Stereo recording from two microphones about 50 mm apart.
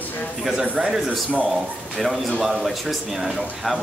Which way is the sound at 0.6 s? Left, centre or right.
Right.